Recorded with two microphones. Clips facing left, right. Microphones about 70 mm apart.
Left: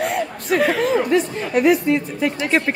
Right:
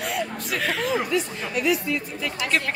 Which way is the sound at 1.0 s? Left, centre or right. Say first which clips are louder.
Left 7 dB; left.